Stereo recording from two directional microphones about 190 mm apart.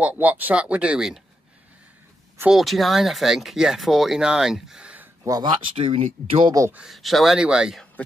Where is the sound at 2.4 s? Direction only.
Centre (ahead or behind).